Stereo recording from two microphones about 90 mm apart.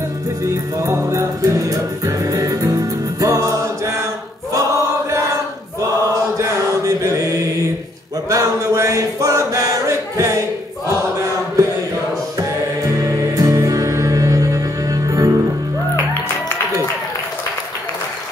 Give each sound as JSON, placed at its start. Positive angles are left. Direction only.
{"t": 0.7, "sound": "music", "side_deg": -35}
{"t": 6.3, "sound": "mantra", "side_deg": -40}
{"t": 8.3, "sound": "chant", "side_deg": -35}
{"t": 13.0, "sound": "music", "side_deg": -35}